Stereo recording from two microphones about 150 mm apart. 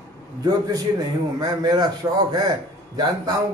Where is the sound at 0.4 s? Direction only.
25° right (ahead or behind).